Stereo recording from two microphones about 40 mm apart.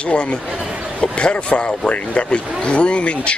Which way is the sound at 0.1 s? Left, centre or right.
Left.